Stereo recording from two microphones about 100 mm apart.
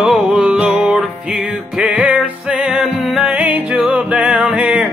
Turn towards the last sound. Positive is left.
turn(degrees=-10)  # may be behind; listen again after turning